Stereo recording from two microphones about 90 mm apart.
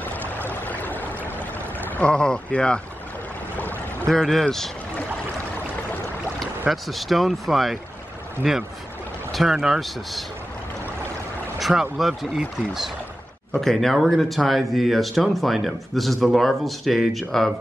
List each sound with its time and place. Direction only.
0.0 s a sound: 20° left (ahead or behind)
1.8 s speech: 15° left (ahead or behind)
4.1 s speech: centre (ahead or behind)
6.7 s speech: centre (ahead or behind)
11.6 s speech: 5° right (ahead or behind)